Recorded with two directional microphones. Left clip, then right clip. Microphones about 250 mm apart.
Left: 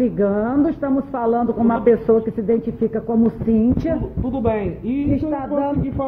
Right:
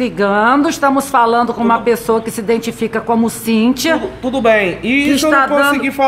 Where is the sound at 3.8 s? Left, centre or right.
Right.